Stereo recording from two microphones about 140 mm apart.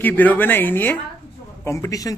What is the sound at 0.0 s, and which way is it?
A man's voice, 10° left (ahead or behind).